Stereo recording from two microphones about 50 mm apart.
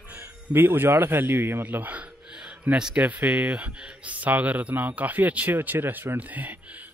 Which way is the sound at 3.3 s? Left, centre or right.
Right.